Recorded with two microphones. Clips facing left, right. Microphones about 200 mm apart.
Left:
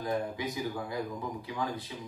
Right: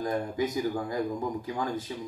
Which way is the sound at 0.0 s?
45° right (ahead or behind).